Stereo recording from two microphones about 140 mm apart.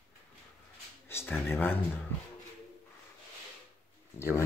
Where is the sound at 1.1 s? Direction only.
15° left (ahead or behind).